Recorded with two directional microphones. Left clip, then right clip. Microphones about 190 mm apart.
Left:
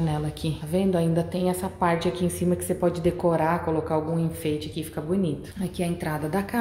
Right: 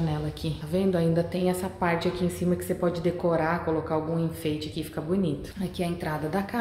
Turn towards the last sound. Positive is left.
turn(degrees=20)  # may be behind; listen again after turning